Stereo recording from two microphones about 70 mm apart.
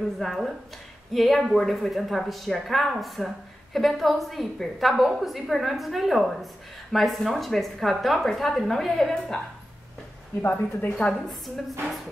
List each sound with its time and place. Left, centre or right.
0.2 s speech: centre
10.5 s a woman's voice: centre
11.1 s speech: centre